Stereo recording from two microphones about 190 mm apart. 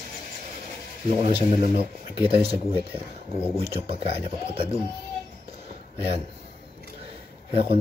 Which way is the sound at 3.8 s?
30° right (ahead or behind).